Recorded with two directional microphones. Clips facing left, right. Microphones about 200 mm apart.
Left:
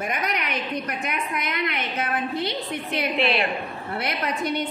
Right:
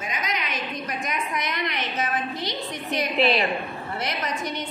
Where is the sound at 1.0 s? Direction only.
60° left (ahead or behind).